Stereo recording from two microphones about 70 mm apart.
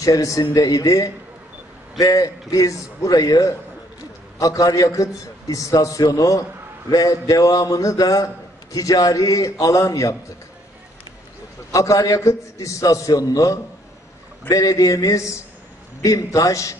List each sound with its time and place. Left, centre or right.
0.0 s a man's voice: left
11.7 s a man's voice: left